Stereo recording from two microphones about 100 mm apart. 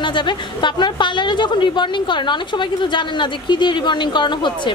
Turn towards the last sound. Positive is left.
turn(degrees=50)  # may be behind; listen again after turning